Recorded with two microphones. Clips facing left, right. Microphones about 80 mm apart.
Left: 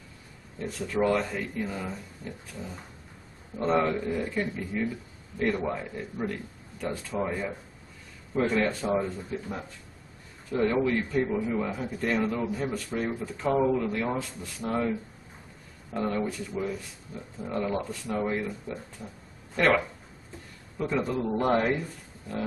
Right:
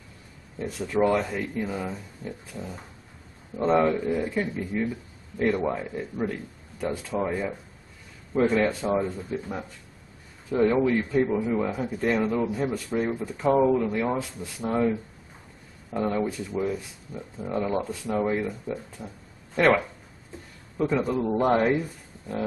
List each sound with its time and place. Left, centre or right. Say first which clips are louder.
0.6 s speech: right 3 dB; centre
5.7 s a man's voice: right 3 dB; centre
8.4 s speech: right 3 dB; centre
20.8 s speech: right 4 dB; centre
21.1 s speech: right 3 dB; centre
21.4 s speech: right 3 dB; centre